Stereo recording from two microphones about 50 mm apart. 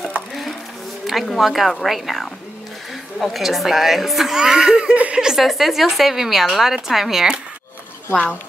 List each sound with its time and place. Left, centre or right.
0.3 s a sound: centre
1.0 s a woman's voice: centre
4.4 s speech: centre
4.9 s speech: right
5.2 s a woman's voice: centre